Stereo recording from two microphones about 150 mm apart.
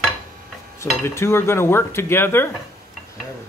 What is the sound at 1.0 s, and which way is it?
Speech, 15° left (ahead or behind).